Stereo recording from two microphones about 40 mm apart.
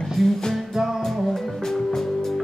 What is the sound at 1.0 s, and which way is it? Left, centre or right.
Music, centre.